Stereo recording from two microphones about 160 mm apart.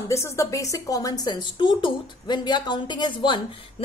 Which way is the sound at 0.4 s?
20° left (ahead or behind).